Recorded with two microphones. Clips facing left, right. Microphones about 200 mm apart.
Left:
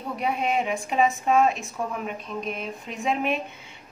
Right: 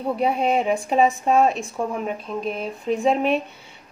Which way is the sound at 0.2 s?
35° right (ahead or behind).